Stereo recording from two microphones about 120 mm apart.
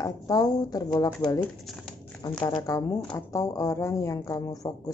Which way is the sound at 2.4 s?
30° left (ahead or behind).